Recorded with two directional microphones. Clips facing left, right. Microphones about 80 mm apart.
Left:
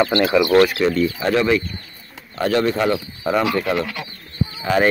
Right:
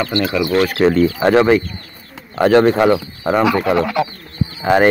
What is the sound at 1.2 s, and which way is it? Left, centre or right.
Speech, right.